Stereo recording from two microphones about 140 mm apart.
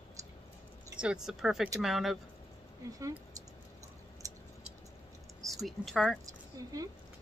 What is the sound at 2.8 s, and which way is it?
Speech, 25° right (ahead or behind).